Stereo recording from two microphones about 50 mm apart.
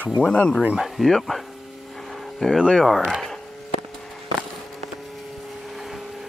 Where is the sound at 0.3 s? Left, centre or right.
Left.